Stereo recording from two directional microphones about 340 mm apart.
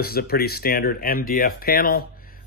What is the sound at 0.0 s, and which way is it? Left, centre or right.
Speech, left.